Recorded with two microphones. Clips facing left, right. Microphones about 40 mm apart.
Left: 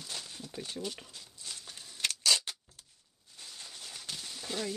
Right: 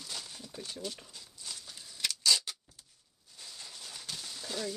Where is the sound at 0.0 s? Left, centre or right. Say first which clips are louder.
Left 1 dB; centre.